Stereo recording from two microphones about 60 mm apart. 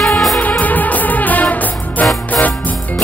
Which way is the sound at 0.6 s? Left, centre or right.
Left.